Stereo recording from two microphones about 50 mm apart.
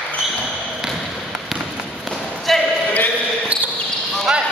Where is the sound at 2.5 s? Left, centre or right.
Centre.